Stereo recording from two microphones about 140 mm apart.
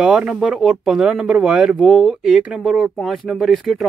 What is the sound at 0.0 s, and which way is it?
Speech, 5° right (ahead or behind).